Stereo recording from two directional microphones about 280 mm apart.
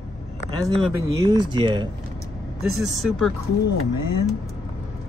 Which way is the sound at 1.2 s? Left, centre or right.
Centre.